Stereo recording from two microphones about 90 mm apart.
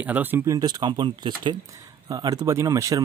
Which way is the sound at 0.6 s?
50° right (ahead or behind).